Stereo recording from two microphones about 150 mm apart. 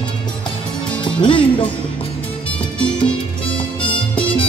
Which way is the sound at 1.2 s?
35° left (ahead or behind).